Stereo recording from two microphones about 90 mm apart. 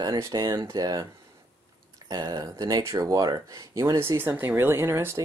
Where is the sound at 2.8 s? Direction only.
35° right (ahead or behind).